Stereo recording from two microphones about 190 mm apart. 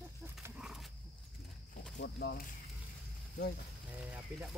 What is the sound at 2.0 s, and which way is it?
Speech, 60° left (ahead or behind).